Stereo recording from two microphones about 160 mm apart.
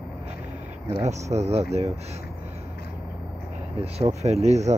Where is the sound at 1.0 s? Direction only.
40° right (ahead or behind).